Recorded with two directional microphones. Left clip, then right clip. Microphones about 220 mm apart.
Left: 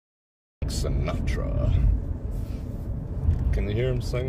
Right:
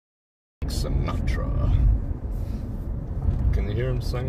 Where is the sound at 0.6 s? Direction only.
20° left (ahead or behind).